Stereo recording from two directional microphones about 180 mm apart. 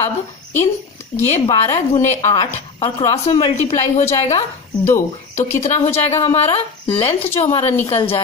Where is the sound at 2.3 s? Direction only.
35° left (ahead or behind).